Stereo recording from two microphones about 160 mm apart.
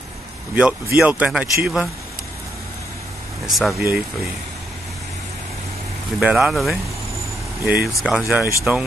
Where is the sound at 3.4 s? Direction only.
Centre (ahead or behind).